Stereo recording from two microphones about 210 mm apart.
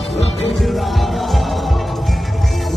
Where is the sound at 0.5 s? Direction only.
Centre (ahead or behind).